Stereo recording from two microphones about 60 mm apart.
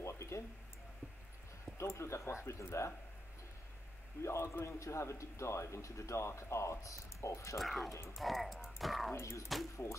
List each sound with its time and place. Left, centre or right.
0.0 s a sound: left
1.8 s a man's voice: left
4.2 s a man's voice: left
7.5 s speech: centre
7.9 s a man's voice: left
8.2 s speech: centre
9.1 s a man's voice: left